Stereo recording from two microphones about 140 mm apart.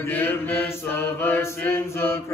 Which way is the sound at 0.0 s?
10° left (ahead or behind).